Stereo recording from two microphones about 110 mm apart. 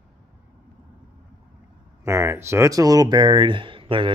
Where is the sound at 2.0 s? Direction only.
25° right (ahead or behind).